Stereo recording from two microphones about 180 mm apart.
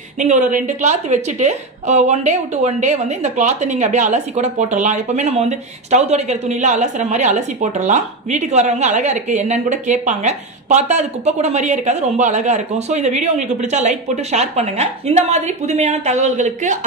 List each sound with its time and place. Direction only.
0.2 s a woman's voice: 45° right (ahead or behind)